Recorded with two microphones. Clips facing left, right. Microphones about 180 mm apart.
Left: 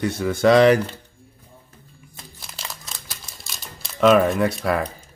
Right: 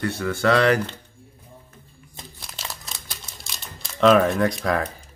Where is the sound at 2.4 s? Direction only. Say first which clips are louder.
Even; centre (ahead or behind).